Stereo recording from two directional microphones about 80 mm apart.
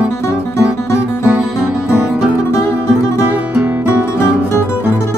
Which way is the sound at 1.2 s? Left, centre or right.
Centre.